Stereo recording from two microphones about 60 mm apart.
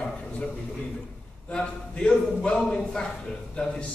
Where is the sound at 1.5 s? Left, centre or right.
Centre.